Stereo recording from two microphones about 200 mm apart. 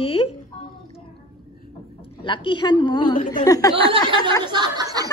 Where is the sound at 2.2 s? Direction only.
25° left (ahead or behind).